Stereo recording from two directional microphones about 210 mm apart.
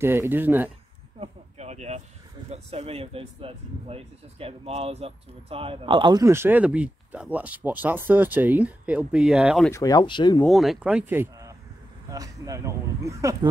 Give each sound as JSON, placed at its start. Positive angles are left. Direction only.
{"t": 0.0, "sound": "speech", "side_deg": -10}
{"t": 1.2, "sound": "a sound", "side_deg": -30}
{"t": 2.5, "sound": "speech", "side_deg": -30}
{"t": 9.7, "sound": "speech", "side_deg": 15}
{"t": 10.4, "sound": "speech", "side_deg": 0}